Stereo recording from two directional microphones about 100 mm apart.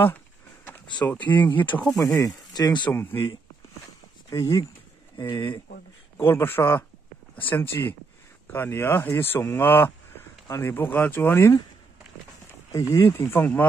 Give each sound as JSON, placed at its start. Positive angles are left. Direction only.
{"t": 1.0, "sound": "speech", "side_deg": 15}
{"t": 2.1, "sound": "speech", "side_deg": 35}
{"t": 2.9, "sound": "speech", "side_deg": 20}
{"t": 4.3, "sound": "speech", "side_deg": 35}
{"t": 12.9, "sound": "speech", "side_deg": 30}
{"t": 13.3, "sound": "speech", "side_deg": 20}